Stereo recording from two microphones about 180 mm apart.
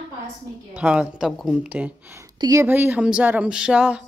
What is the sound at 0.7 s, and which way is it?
Speech, 5° right (ahead or behind).